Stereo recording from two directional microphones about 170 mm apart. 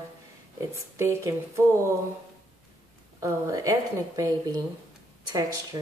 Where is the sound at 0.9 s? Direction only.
15° right (ahead or behind).